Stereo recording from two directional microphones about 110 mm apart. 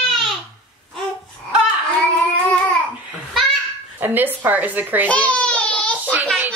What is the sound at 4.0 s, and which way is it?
A woman's voice, 15° right (ahead or behind).